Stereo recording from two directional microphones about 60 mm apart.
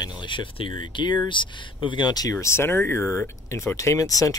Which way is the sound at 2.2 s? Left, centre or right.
Left.